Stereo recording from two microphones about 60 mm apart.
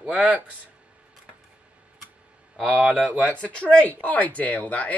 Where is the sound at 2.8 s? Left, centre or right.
Centre.